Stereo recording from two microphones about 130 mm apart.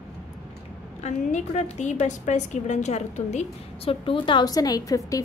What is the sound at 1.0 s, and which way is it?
A woman's voice, 60° left (ahead or behind).